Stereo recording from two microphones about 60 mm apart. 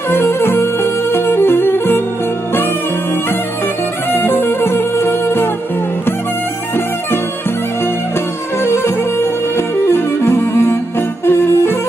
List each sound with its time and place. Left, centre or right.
0.1 s music: left
4.1 s music: left
8.6 s music: left